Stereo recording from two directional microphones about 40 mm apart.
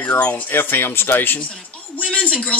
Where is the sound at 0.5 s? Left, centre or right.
Left.